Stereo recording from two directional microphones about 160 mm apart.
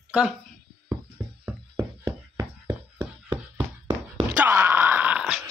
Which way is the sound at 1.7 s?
20° right (ahead or behind).